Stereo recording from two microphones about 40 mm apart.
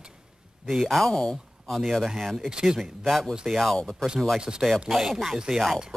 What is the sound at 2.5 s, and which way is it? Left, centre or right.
Speech, centre.